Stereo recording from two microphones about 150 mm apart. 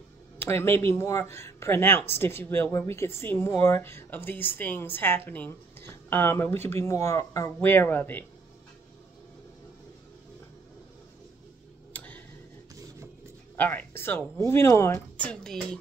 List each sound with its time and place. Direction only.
0.4 s speech: 15° left (ahead or behind)
11.9 s tick-tock: 10° left (ahead or behind)
13.6 s speech: 10° left (ahead or behind)